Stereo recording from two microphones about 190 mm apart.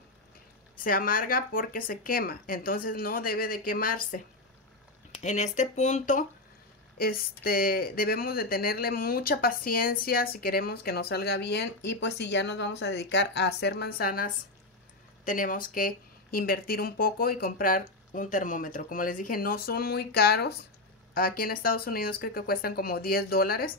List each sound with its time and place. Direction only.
0.7 s speech: 50° left (ahead or behind)
5.2 s speech: 40° left (ahead or behind)